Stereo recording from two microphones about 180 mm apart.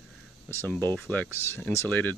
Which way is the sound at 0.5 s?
15° left (ahead or behind).